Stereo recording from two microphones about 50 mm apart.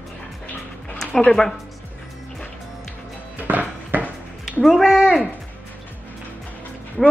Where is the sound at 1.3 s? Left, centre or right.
Centre.